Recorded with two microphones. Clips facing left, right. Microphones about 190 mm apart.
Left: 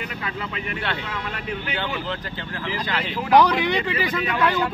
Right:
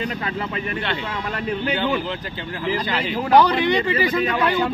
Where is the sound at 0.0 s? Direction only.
35° right (ahead or behind).